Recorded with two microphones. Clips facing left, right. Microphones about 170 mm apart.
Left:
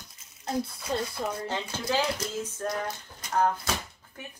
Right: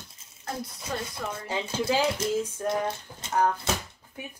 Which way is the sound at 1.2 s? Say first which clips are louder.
Left 2 dB; 30° left (ahead or behind).